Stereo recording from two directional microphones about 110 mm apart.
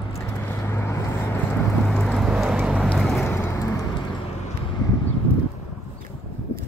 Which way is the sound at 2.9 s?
Centre (ahead or behind).